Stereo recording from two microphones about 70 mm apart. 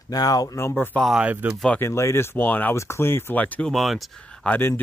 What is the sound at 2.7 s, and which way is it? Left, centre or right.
Speech, left.